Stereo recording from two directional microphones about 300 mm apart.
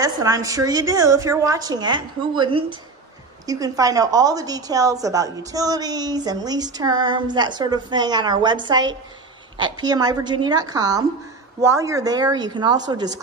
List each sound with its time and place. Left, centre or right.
0.0 s a woman's voice: centre